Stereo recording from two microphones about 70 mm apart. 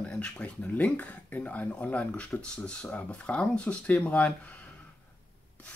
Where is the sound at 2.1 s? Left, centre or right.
Centre.